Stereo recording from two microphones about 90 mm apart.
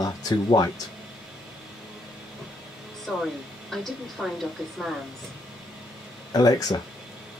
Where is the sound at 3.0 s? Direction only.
Centre (ahead or behind).